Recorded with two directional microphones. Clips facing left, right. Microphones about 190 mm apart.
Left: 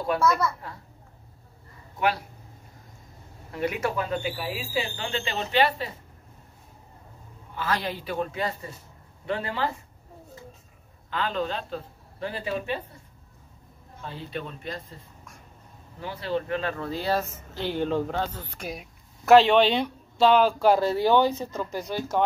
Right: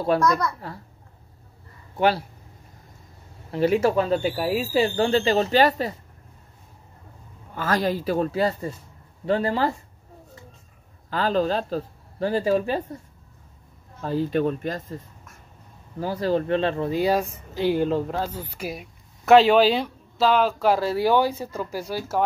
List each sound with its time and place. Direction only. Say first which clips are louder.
0.2 s speech: right 1 dB; 5° left (ahead or behind)
2.0 s speech: right 5 dB; 30° right (ahead or behind)
3.5 s speech: right 8 dB; 30° right (ahead or behind)
7.5 s speech: right 6 dB; 45° right (ahead or behind)
11.1 s speech: right 6 dB; 40° right (ahead or behind)
14.0 s speech: right 13 dB; 45° right (ahead or behind)
16.0 s speech: right 6 dB; 40° right (ahead or behind); by 22.2 s 5° right (ahead or behind)